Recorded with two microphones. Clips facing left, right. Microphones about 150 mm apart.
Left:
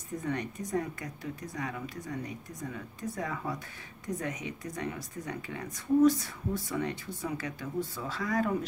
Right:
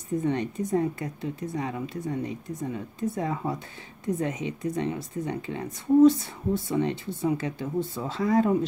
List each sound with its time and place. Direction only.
0.2 s speech: 25° right (ahead or behind)